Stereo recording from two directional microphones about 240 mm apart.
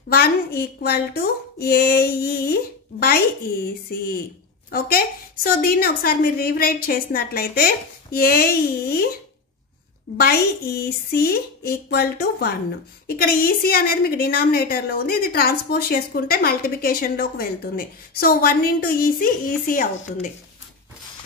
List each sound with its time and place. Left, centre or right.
0.1 s a woman's voice: left
10.1 s a woman's voice: left